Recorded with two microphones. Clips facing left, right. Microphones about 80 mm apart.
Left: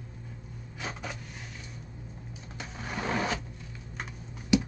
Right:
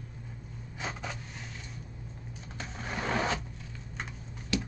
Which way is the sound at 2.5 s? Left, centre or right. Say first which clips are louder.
Even; centre.